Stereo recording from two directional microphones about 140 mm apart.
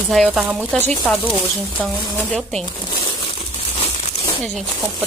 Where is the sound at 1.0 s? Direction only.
10° left (ahead or behind).